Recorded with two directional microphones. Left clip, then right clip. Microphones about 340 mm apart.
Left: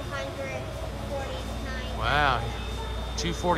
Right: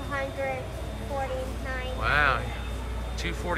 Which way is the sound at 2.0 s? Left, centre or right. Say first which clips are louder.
Even; centre.